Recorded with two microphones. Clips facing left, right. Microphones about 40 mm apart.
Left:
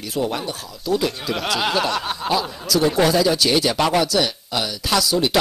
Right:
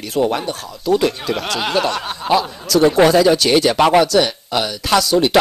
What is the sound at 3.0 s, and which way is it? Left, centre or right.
Speech, right.